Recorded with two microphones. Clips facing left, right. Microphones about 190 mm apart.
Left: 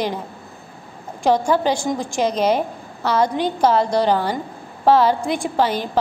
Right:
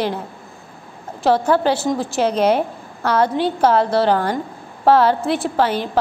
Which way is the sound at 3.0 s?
10° left (ahead or behind).